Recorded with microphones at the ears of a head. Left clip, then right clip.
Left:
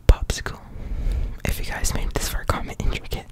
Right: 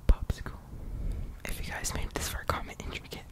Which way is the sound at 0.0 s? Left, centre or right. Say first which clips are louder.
Left 13 dB; left.